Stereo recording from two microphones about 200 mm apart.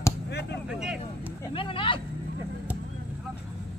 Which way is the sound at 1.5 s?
25° left (ahead or behind).